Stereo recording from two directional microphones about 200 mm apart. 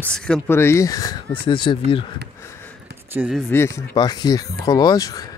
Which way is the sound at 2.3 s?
15° left (ahead or behind).